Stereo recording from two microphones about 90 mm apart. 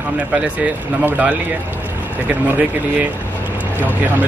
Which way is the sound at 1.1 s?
15° right (ahead or behind).